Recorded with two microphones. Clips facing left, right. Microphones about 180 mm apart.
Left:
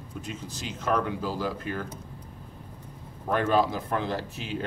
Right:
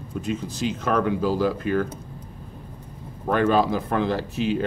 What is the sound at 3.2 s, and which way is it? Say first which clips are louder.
Speech: right 4 dB; 90° right.